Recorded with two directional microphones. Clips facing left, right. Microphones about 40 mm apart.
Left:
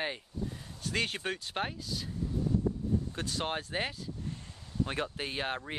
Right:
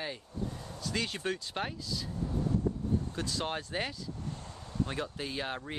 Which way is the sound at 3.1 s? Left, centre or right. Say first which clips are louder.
Even; left.